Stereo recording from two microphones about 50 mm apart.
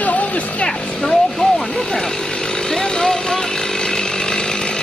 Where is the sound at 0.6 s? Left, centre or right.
Centre.